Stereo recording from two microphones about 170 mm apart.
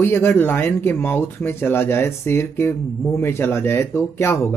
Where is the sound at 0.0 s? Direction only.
15° left (ahead or behind).